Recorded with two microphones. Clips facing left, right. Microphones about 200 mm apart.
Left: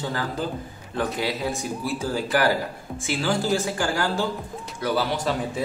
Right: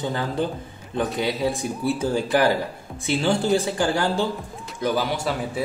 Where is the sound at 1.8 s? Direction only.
25° right (ahead or behind).